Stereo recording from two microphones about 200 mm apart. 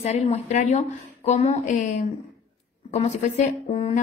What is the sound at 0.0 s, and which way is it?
A woman's voice, 35° left (ahead or behind).